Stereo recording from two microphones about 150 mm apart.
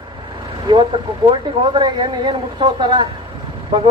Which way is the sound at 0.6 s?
30° right (ahead or behind).